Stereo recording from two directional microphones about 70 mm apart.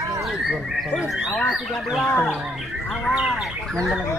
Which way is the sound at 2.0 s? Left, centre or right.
Left.